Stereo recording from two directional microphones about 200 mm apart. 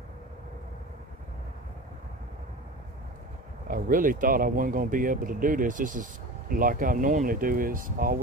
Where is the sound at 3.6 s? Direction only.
45° right (ahead or behind).